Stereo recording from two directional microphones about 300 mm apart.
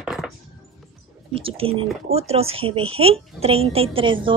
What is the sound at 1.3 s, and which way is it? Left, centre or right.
A woman's voice, centre.